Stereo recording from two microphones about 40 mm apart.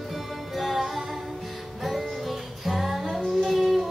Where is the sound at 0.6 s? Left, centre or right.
Centre.